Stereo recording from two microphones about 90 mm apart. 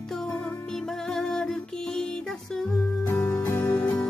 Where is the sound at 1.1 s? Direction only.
5° left (ahead or behind).